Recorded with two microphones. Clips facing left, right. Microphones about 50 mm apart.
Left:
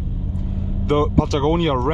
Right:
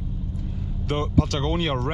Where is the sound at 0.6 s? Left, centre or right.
Left.